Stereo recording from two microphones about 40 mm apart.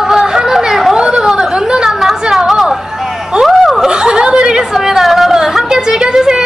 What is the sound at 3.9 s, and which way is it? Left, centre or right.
Chuckle, right.